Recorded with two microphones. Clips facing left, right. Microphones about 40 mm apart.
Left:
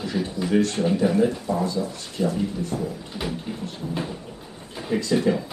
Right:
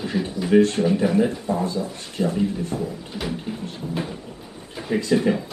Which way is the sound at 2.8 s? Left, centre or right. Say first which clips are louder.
Right 1 dB; centre.